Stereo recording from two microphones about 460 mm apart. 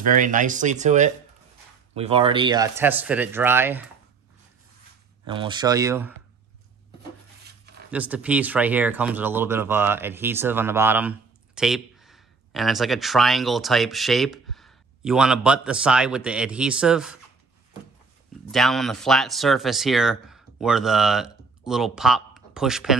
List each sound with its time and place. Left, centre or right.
0.0 s speech: centre
5.2 s speech: centre
7.9 s speech: centre
18.5 s speech: centre